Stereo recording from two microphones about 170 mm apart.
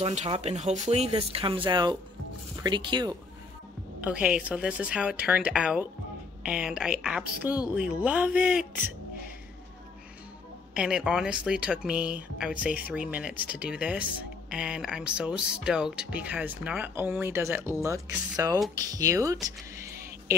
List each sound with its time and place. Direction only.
0.0 s speech: 35° right (ahead or behind)
4.0 s speech: 5° right (ahead or behind)
10.7 s speech: 5° right (ahead or behind)
19.4 s a sound: 15° right (ahead or behind)